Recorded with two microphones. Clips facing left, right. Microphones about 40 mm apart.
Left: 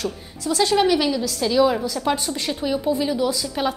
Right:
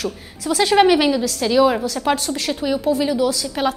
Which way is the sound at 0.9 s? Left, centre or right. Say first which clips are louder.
Right 4 dB; right.